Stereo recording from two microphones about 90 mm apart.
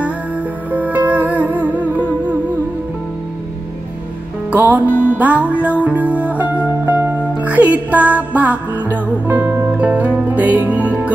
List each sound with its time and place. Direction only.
0.7 s music: 15° right (ahead or behind)
4.5 s music: 20° right (ahead or behind)
4.8 s music: 20° left (ahead or behind)
5.1 s music: 15° right (ahead or behind)